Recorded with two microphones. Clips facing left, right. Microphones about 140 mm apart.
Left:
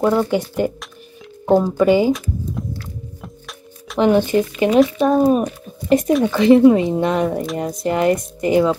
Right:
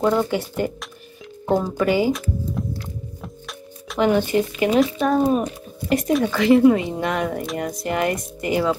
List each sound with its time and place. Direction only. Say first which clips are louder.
0.0 s speech: left 3 dB; 15° left (ahead or behind)
3.2 s music: right 1 dB; centre (ahead or behind)
4.0 s speech: left 3 dB; 20° left (ahead or behind)